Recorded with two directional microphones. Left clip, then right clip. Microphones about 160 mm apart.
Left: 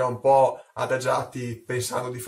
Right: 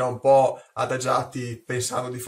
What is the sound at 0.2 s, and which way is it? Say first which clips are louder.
A man's voice: right 1 dB; 10° right (ahead or behind).